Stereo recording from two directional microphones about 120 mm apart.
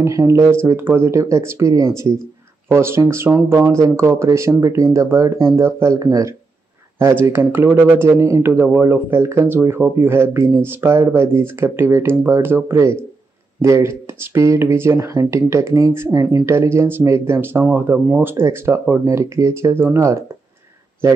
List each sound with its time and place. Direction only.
0.0 s speech: 25° right (ahead or behind)